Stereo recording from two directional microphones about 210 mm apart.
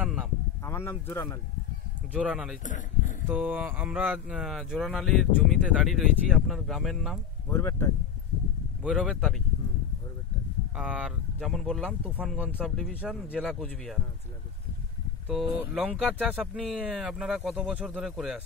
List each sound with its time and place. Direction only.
0.0 s a sound: 5° right (ahead or behind)
0.7 s speech: 10° left (ahead or behind)
2.1 s speech: 5° right (ahead or behind)
2.6 s speech: 35° left (ahead or behind)
3.3 s speech: 10° right (ahead or behind)
7.5 s speech: 15° left (ahead or behind)
8.8 s speech: 5° right (ahead or behind)
10.8 s speech: 5° right (ahead or behind)
15.2 s speech: 5° right (ahead or behind)